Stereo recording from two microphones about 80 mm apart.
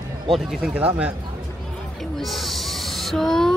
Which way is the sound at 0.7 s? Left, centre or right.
Centre.